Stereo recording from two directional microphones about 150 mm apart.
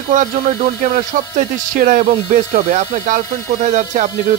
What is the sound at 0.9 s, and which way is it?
Speech, 65° right (ahead or behind).